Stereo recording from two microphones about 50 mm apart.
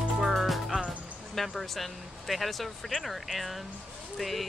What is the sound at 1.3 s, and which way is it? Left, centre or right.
Speech, centre.